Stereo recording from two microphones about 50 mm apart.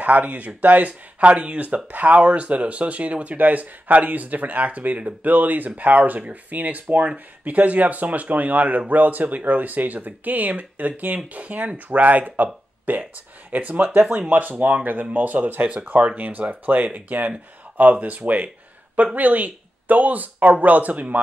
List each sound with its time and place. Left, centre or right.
0.0 s speech: right